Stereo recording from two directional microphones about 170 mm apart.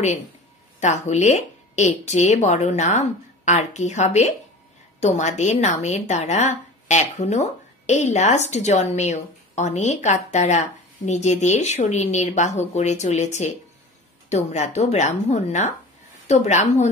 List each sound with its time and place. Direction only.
0.7 s a woman's voice: 45° left (ahead or behind)